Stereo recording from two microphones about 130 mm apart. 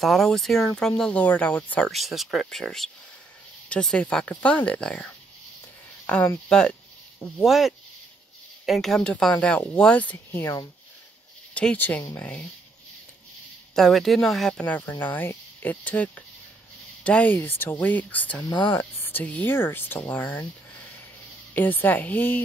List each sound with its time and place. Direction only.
0.0 s speech: centre (ahead or behind)
1.9 s speech: centre (ahead or behind); by 10.7 s 20° left (ahead or behind)
11.5 s speech: 10° left (ahead or behind)
13.7 s speech: centre (ahead or behind)
21.5 s speech: 15° left (ahead or behind)